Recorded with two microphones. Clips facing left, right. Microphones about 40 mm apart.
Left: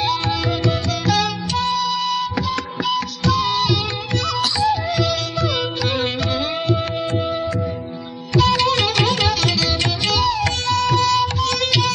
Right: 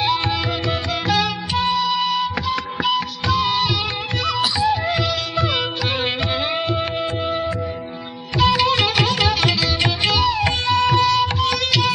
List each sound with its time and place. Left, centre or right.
0.0 s music: centre